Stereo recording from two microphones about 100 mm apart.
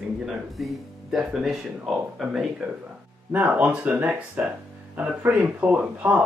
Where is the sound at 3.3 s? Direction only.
20° right (ahead or behind).